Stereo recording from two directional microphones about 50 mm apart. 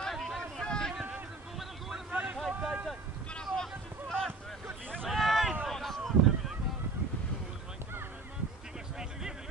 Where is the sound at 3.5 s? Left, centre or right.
Centre.